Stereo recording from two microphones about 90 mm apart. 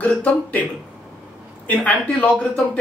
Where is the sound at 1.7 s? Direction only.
15° left (ahead or behind).